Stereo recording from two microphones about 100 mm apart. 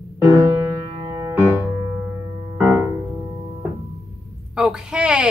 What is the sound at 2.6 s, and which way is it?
Music, 15° right (ahead or behind).